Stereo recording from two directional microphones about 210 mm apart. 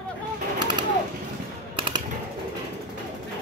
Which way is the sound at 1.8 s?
25° right (ahead or behind).